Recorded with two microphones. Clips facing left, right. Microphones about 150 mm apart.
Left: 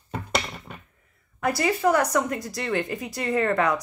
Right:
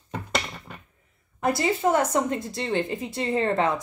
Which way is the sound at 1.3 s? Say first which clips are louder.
Even; 25° right (ahead or behind).